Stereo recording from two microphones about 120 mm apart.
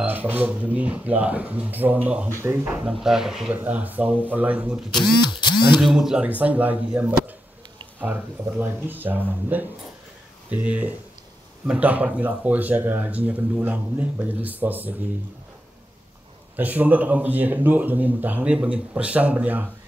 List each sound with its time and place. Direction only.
0.0 s speech: 15° right (ahead or behind)
2.9 s speech: 5° right (ahead or behind)
3.5 s speech: 15° right (ahead or behind)
5.0 s camera: 40° left (ahead or behind)
5.8 s speech: 5° right (ahead or behind)
16.5 s speech: 15° right (ahead or behind)